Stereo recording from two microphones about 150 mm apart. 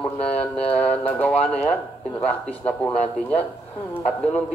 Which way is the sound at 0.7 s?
10° left (ahead or behind).